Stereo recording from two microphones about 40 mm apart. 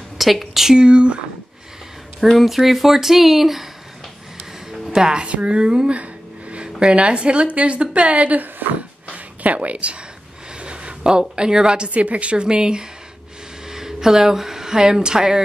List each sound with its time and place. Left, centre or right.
0.2 s speech: centre
0.7 s a woman's voice: right
2.2 s speech: centre
4.6 s music: centre
5.3 s a woman's voice: right
8.6 s speech: right
9.1 s a sound: right
10.6 s a woman's voice: right
12.0 s a woman's voice: right; by 15.4 s centre